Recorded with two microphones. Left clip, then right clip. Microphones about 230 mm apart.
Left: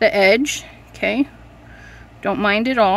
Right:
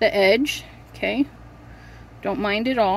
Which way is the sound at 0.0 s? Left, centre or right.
Centre.